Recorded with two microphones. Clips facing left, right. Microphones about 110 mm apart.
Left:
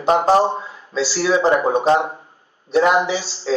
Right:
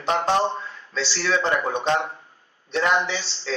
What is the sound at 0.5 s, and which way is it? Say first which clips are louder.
Speech: left 6 dB; 5° left (ahead or behind).